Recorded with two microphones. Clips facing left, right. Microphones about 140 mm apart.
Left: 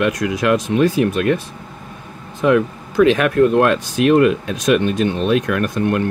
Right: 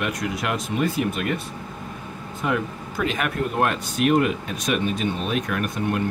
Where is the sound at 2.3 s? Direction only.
90° left.